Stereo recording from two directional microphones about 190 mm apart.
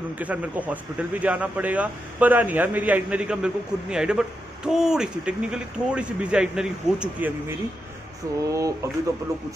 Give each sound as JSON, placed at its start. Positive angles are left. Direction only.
{"t": 0.2, "sound": "speech", "side_deg": -10}